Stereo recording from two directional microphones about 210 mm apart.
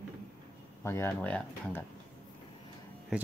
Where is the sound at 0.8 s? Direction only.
10° left (ahead or behind).